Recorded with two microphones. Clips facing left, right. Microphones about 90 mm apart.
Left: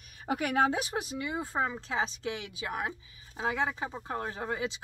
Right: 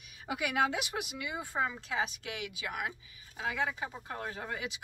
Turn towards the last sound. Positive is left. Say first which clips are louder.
# left 5 dB
turn(degrees=30)  # may be behind; listen again after turning